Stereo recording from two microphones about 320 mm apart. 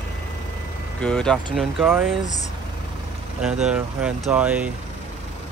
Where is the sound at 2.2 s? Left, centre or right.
Left.